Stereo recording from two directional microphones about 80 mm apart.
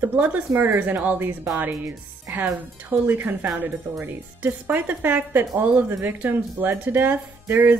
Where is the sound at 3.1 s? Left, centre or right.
Right.